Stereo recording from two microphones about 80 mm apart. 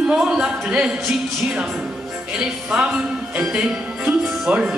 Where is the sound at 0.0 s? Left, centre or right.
Centre.